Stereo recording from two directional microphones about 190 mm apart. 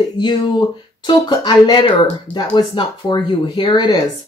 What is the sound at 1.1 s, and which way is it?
Speech, 25° left (ahead or behind).